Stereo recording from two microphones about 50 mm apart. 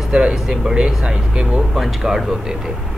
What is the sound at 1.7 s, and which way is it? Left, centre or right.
Speech, centre.